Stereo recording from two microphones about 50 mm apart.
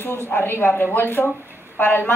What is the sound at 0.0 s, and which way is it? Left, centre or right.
Speech, left.